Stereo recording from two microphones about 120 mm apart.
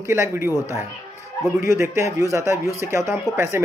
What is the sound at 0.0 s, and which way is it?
A man's voice, 20° right (ahead or behind).